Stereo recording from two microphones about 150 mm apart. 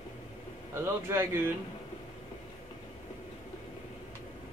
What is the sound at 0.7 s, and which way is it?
Speech, 15° right (ahead or behind).